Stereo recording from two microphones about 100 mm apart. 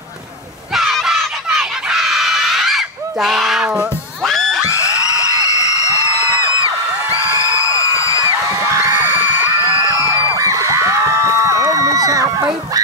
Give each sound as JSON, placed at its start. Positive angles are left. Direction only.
{"t": 0.7, "sound": "crowd", "side_deg": -5}
{"t": 4.2, "sound": "crowd", "side_deg": 5}
{"t": 6.6, "sound": "music", "side_deg": 30}
{"t": 8.4, "sound": "music", "side_deg": -30}
{"t": 9.9, "sound": "music", "side_deg": -35}
{"t": 10.3, "sound": "a sound", "side_deg": -30}